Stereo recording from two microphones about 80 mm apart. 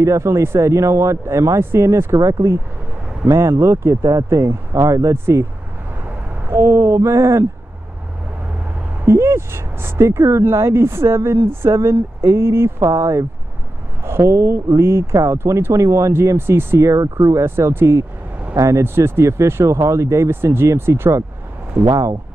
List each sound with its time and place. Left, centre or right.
0.0 s speech: right
2.1 s speech: right
3.9 s speech: right
6.5 s speech: right
9.0 s speech: right